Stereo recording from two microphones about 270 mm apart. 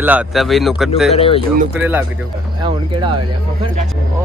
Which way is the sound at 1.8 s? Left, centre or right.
Centre.